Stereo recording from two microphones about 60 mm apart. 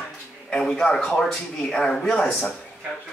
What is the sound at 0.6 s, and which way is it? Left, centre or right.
Speech, centre.